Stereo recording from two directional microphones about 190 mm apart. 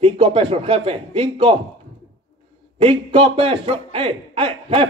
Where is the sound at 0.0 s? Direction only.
30° right (ahead or behind).